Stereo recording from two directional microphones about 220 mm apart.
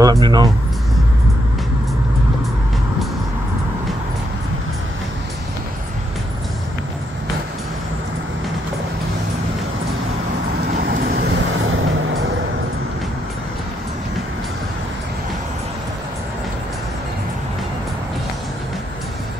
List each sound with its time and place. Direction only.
0.0 s speech: 15° right (ahead or behind)
10.8 s vehicle: 40° right (ahead or behind); by 12.3 s 60° right (ahead or behind)